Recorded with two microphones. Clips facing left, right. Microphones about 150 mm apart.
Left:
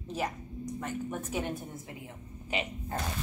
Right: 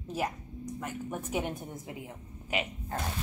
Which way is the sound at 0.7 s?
10° right (ahead or behind).